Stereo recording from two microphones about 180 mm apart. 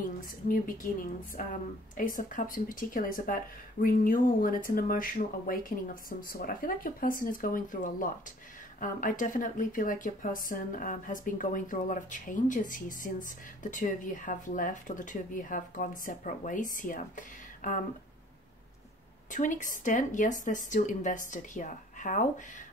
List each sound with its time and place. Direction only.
0.0 s speech: 50° left (ahead or behind)
19.3 s a woman's voice: 45° left (ahead or behind)